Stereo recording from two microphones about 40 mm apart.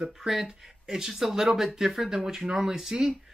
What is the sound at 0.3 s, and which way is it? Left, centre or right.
Speech, centre.